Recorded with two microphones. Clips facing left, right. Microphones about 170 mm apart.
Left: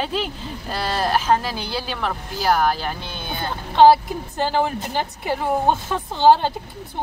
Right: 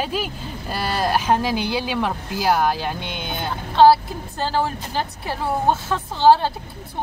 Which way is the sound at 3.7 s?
20° left (ahead or behind).